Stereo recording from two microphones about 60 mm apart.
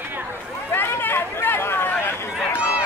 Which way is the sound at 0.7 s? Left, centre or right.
Left.